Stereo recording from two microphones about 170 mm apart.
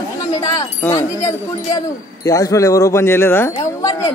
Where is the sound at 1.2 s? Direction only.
20° left (ahead or behind).